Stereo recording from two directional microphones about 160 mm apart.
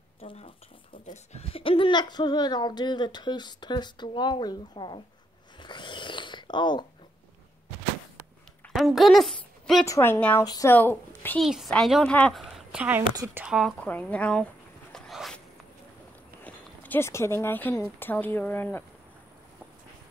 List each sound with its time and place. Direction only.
0.2 s speech: 40° left (ahead or behind)
5.6 s a sound: 30° left (ahead or behind)
8.6 s a woman's voice: centre (ahead or behind)
9.8 s speech: 20° left (ahead or behind)
10.4 s speech: 25° left (ahead or behind)
10.7 s a woman's voice: 10° left (ahead or behind)
11.4 s a woman's voice: centre (ahead or behind)
13.0 s a woman's voice: 25° right (ahead or behind)
13.4 s a woman's voice: centre (ahead or behind)
13.8 s dog: 10° left (ahead or behind)
16.4 s speech: 10° left (ahead or behind)